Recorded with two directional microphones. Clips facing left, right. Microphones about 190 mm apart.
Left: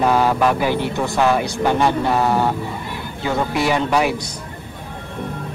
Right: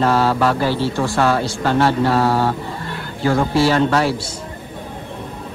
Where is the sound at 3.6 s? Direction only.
15° left (ahead or behind).